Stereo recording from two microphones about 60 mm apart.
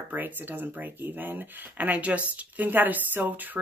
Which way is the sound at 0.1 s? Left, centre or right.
Right.